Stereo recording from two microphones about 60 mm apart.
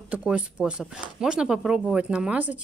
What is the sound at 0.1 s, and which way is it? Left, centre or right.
Speech, right.